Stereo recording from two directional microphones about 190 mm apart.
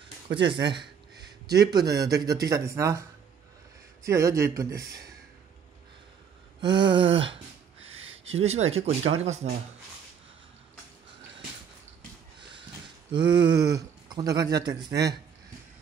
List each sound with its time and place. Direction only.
0.5 s speech: 25° right (ahead or behind)
4.0 s speech: 15° right (ahead or behind)
6.6 s speech: 25° right (ahead or behind)
7.8 s a sound: 90° right
8.3 s speech: 35° right (ahead or behind)
12.8 s a sound: 25° right (ahead or behind)
13.5 s speech: 20° right (ahead or behind)